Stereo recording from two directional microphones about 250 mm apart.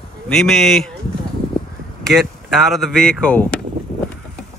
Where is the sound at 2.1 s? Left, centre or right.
Centre.